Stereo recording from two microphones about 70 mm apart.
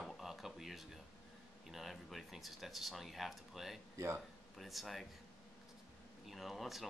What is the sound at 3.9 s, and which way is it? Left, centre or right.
Speech, right.